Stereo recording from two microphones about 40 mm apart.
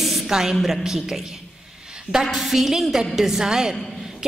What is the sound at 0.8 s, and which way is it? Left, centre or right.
Speech, centre.